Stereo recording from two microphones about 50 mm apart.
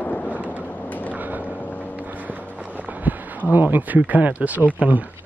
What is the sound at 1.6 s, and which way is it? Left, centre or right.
Vehicle, left.